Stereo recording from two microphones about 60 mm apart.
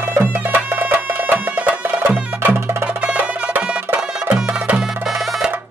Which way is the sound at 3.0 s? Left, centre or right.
Right.